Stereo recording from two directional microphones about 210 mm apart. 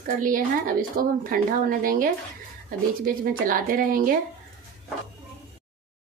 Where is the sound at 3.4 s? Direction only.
40° right (ahead or behind).